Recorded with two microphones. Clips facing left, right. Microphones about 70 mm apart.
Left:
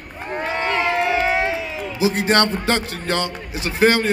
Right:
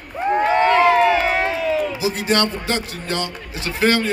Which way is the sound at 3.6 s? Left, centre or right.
Left.